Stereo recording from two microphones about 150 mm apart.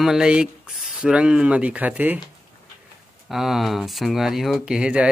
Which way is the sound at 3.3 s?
Centre (ahead or behind).